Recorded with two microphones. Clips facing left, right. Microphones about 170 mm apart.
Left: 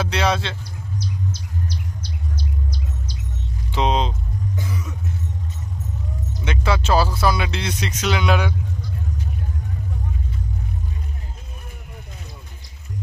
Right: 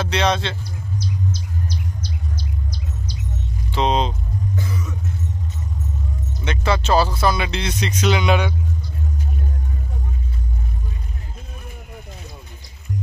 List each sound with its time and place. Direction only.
0.0 s speech: 5° left (ahead or behind)
0.9 s a sound: 65° left (ahead or behind)
3.7 s vehicle: 5° left (ahead or behind)
6.4 s speech: 10° left (ahead or behind)